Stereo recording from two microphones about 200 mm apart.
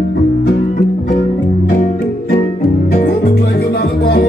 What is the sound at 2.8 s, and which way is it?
Music, 50° left (ahead or behind).